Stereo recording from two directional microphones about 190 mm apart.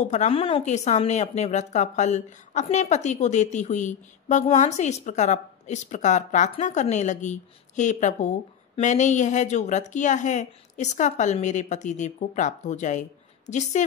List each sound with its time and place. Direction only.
0.0 s a woman's voice: 35° left (ahead or behind)